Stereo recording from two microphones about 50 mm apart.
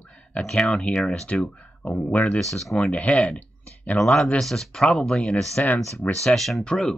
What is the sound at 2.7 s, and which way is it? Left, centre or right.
Speech, left.